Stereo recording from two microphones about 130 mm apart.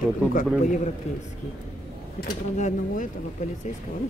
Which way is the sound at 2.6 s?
65° left (ahead or behind).